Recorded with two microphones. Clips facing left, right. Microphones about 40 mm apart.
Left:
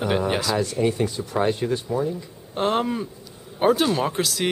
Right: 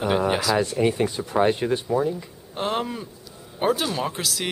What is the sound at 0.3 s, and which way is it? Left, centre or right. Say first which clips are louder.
Speech: right 1 dB; centre.